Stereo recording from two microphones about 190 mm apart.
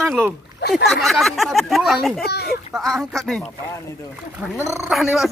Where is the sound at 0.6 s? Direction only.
60° left (ahead or behind).